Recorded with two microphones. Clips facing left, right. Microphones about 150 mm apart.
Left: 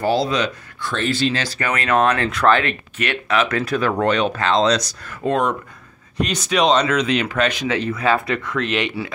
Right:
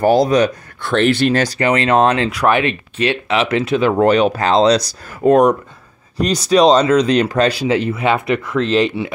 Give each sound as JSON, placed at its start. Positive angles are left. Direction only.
{"t": 0.0, "sound": "speech", "side_deg": -45}
{"t": 1.6, "sound": "speech", "side_deg": -30}
{"t": 2.2, "sound": "speech", "side_deg": -15}
{"t": 6.1, "sound": "speech", "side_deg": -35}